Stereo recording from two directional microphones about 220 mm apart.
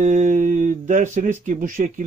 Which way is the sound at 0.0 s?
35° right (ahead or behind).